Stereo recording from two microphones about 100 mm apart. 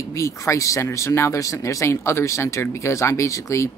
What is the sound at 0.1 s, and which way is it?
Speech, 30° left (ahead or behind).